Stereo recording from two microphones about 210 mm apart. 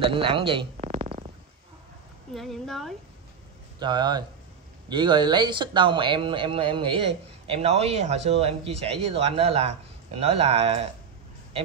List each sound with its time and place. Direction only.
0.0 s a man's voice: 25° right (ahead or behind)
2.3 s a woman's voice: centre (ahead or behind)
3.8 s speech: 20° right (ahead or behind)